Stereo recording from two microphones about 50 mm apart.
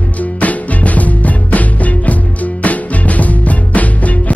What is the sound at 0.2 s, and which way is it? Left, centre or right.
Music, left.